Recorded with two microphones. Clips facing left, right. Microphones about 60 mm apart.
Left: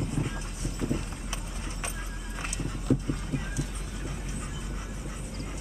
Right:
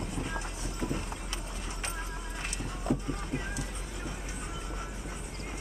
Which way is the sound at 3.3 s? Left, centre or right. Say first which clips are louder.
Even; right.